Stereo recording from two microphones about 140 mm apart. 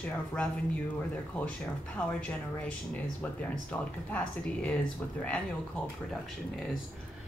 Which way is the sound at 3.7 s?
10° left (ahead or behind).